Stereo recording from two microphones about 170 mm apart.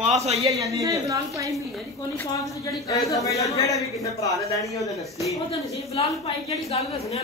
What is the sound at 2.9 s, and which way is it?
A man's voice, 20° left (ahead or behind).